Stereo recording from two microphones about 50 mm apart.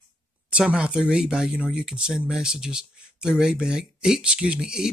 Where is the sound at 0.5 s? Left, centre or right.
Right.